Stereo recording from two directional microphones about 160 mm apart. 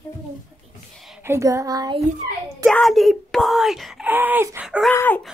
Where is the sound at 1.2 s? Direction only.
20° right (ahead or behind).